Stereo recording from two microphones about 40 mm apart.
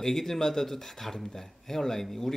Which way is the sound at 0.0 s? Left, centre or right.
Centre.